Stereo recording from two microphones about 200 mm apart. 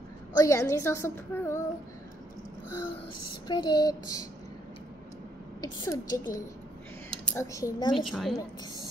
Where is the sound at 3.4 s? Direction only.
20° left (ahead or behind).